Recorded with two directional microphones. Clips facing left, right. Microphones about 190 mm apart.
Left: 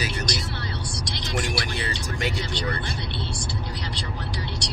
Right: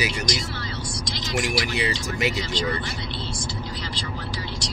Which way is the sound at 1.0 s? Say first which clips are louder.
Right 1 dB; 60° left (ahead or behind).